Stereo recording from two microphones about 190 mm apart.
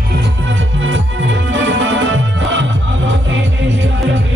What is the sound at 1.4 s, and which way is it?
Music, 80° right.